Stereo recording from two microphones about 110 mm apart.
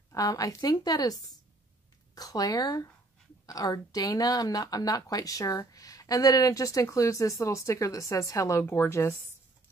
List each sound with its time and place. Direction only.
0.1 s speech: 30° left (ahead or behind)